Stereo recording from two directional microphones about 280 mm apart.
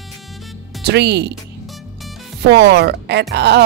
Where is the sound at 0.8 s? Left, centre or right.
Right.